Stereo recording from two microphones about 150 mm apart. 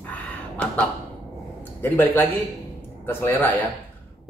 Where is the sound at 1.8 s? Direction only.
15° left (ahead or behind).